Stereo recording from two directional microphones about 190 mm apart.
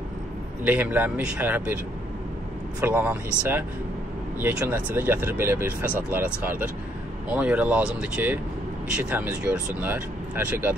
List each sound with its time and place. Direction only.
0.7 s speech: 10° right (ahead or behind)
2.8 s speech: 10° right (ahead or behind)